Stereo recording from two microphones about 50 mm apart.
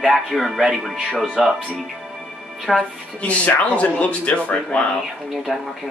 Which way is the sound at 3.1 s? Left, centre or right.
Left.